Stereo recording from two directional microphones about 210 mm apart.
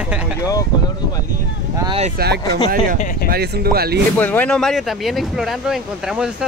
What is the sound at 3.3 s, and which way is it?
Speech, 45° right (ahead or behind).